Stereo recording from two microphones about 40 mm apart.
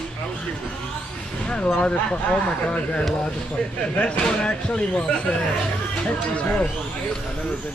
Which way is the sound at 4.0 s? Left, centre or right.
Left.